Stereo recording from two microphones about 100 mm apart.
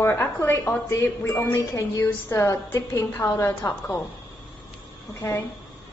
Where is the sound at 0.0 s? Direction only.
30° left (ahead or behind).